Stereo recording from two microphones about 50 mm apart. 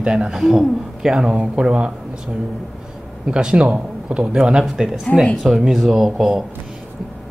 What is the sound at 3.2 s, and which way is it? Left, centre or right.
Speech, centre.